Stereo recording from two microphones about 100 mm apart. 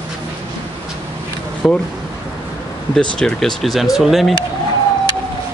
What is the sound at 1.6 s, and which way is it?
Speech, 5° left (ahead or behind).